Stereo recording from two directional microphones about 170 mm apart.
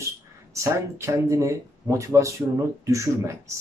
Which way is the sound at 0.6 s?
20° right (ahead or behind).